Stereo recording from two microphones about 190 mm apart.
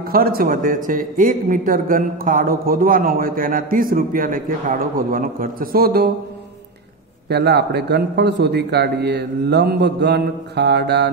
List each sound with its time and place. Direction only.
0.1 s a man's voice: 50° right (ahead or behind)
7.2 s a man's voice: 60° right (ahead or behind)